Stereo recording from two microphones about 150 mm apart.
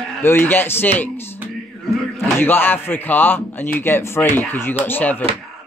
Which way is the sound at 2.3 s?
15° left (ahead or behind).